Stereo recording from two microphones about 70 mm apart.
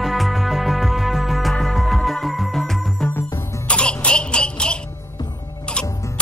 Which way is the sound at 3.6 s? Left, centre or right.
Centre.